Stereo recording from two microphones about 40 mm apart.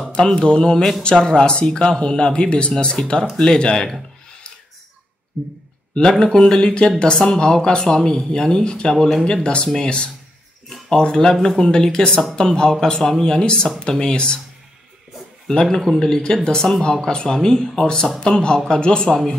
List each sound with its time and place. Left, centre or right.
0.1 s speech: left
5.9 s speech: left
11.7 s speech: left
13.0 s speech: centre
13.3 s speech: left
15.5 s speech: centre